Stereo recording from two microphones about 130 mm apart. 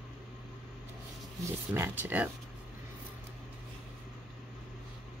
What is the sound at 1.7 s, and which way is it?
Speech, 15° right (ahead or behind).